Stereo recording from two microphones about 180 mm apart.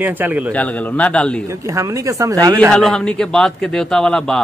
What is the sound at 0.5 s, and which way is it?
Speech, 10° left (ahead or behind).